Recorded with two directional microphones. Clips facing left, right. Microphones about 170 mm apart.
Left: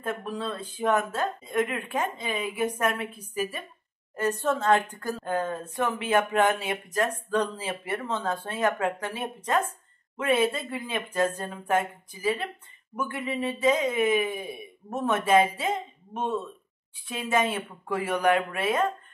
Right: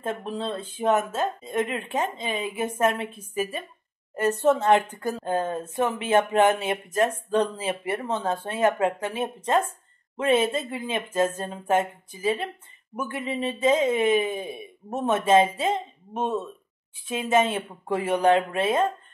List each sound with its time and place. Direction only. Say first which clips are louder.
0.0 s speech: right 2 dB; 25° right (ahead or behind)